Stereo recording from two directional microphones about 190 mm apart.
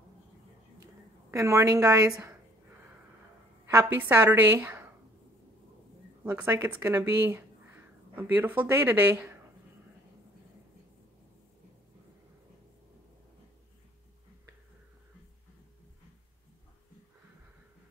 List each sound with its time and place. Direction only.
1.3 s a woman's voice: 15° right (ahead or behind)
3.6 s a woman's voice: 15° right (ahead or behind)
6.2 s a woman's voice: 10° right (ahead or behind)